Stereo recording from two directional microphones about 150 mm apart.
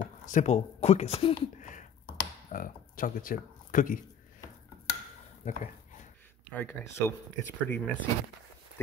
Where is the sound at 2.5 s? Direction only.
70° left (ahead or behind).